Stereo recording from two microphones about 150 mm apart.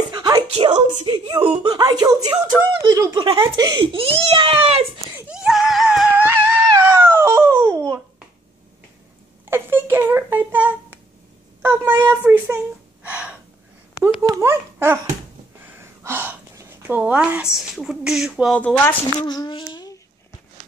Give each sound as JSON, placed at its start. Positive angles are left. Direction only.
{"t": 0.1, "sound": "a sound", "side_deg": -30}
{"t": 0.5, "sound": "a woman's voice", "side_deg": -45}
{"t": 1.0, "sound": "speech", "side_deg": -30}
{"t": 3.2, "sound": "speech", "side_deg": -35}
{"t": 5.1, "sound": "a sound", "side_deg": -5}
{"t": 6.7, "sound": "babbling", "side_deg": -15}
{"t": 9.5, "sound": "a child's voice", "side_deg": -15}
{"t": 13.0, "sound": "gasp", "side_deg": -10}
{"t": 14.2, "sound": "speech", "side_deg": -15}
{"t": 18.6, "sound": "speech", "side_deg": 10}
{"t": 19.1, "sound": "a sound", "side_deg": 30}